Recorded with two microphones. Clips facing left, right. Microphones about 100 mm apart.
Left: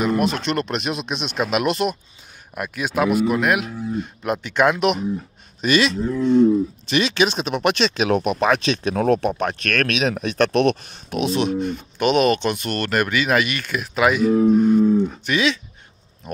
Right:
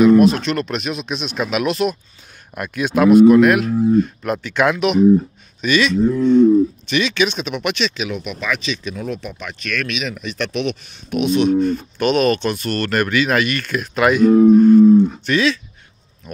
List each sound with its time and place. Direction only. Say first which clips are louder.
0.2 s speech: right 6 dB; 20° left (ahead or behind)
5.6 s speech: right 1 dB; 30° left (ahead or behind)
5.9 s speech: right 6 dB; centre (ahead or behind)
6.9 s speech: right 1 dB; 30° left (ahead or behind); by 9.2 s 60° left (ahead or behind)
9.3 s speech: left 5 dB; 45° left (ahead or behind)
11.1 s speech: right 5 dB; 30° left (ahead or behind)
11.6 s speech: right 3 dB; 20° left (ahead or behind)